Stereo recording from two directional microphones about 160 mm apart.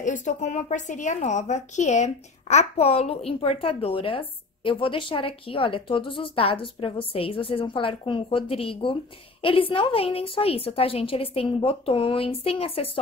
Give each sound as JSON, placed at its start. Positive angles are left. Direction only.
{"t": 0.0, "sound": "a woman's voice", "side_deg": 50}